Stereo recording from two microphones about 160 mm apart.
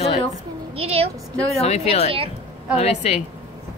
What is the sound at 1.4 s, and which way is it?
Speech, 40° left (ahead or behind).